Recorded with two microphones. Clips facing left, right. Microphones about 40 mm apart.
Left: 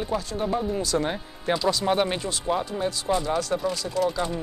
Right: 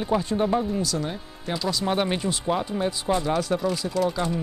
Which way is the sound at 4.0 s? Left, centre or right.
Centre.